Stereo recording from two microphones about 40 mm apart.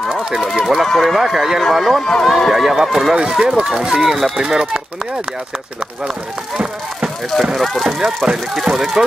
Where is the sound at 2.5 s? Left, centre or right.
Centre.